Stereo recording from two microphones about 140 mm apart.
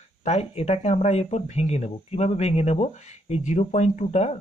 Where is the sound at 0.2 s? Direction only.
50° left (ahead or behind).